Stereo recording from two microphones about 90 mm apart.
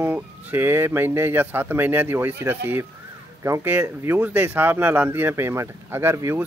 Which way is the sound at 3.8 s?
30° right (ahead or behind).